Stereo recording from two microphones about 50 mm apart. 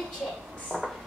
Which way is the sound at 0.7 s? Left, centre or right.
Centre.